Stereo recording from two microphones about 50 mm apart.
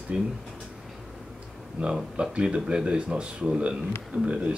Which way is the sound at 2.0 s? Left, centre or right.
Centre.